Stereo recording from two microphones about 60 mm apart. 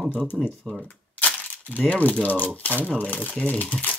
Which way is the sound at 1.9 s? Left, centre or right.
Left.